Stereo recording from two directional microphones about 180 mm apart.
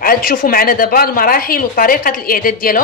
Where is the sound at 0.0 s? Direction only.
55° left (ahead or behind).